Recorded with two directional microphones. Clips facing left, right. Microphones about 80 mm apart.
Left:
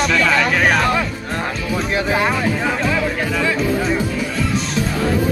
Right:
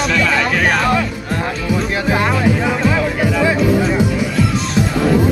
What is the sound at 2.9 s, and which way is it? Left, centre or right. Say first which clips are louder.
Music: right 3 dB; centre.